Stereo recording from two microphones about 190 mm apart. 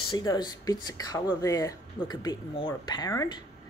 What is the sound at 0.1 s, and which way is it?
A woman's voice, 20° left (ahead or behind).